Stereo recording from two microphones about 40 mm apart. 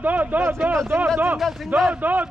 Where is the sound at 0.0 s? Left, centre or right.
Right.